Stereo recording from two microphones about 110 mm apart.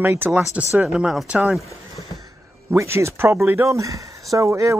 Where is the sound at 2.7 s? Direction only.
25° right (ahead or behind).